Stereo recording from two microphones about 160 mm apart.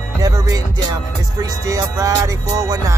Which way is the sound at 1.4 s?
20° right (ahead or behind).